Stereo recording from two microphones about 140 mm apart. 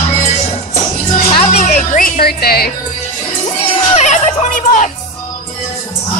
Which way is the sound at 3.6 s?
45° left (ahead or behind).